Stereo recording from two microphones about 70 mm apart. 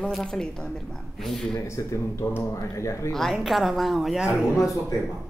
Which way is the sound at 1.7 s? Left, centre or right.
Left.